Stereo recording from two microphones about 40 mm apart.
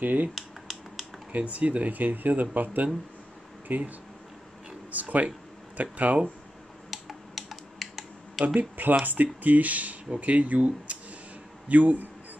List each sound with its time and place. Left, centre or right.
0.0 s speech: right
0.3 s finger snapping: centre
1.3 s speech: right
5.0 s speech: right
6.9 s computer keyboard: centre
8.5 s speech: right